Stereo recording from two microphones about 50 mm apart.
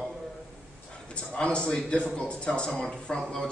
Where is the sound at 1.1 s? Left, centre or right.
Left.